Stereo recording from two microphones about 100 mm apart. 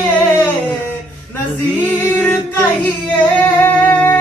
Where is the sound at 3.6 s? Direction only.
15° left (ahead or behind).